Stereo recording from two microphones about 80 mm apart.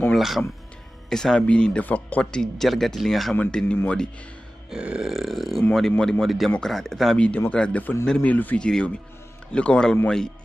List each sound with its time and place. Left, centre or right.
0.1 s speech: centre
1.1 s speech: centre
2.4 s speech: centre
3.7 s speech: centre
4.6 s speech: centre
7.2 s speech: centre